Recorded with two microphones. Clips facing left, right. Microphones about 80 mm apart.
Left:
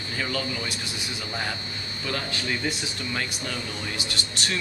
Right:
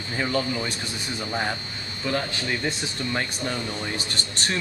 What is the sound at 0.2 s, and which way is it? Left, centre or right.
Speech, right.